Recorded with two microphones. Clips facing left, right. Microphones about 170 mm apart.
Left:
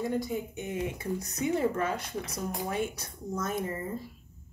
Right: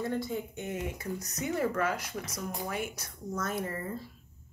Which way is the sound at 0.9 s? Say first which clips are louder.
Left 3 dB; 30° left (ahead or behind).